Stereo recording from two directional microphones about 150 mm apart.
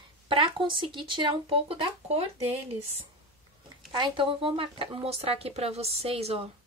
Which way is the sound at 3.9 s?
35° right (ahead or behind).